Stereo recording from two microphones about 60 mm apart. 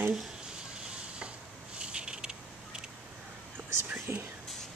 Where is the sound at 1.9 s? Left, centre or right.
Centre.